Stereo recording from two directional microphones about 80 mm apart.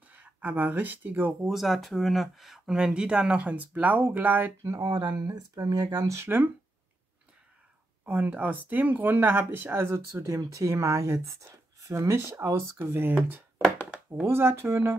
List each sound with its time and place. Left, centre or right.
0.1 s speech: right
1.4 s speech: centre; by 4.5 s right
4.8 s speech: right
6.1 s speech: right
8.0 s speech: centre
10.2 s speech: right; by 14.0 s centre
14.2 s speech: right